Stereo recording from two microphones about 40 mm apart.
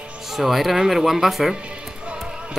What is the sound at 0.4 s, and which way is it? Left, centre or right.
Speech, centre.